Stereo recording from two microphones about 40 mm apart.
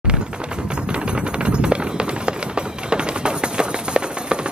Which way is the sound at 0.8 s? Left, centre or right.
Right.